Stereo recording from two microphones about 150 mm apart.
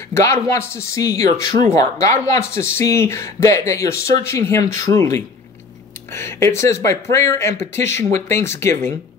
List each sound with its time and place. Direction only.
0.1 s speech: 20° left (ahead or behind)